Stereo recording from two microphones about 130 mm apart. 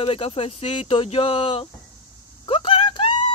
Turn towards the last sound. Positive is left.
turn(degrees=40)  # may be behind; listen again after turning